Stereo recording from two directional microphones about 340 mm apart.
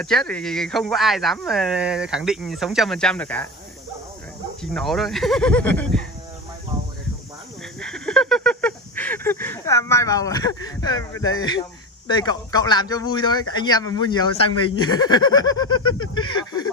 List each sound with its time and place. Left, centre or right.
0.0 s speech: centre
4.7 s speech: centre
7.8 s a sound: centre
11.1 s speech: centre
15.7 s a sound: left
16.2 s speech: centre